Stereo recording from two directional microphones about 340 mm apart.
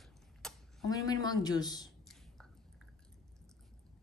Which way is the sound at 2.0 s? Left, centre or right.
Centre.